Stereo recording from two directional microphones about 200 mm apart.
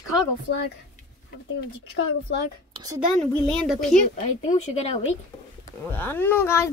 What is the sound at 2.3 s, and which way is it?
Speech, 60° left (ahead or behind).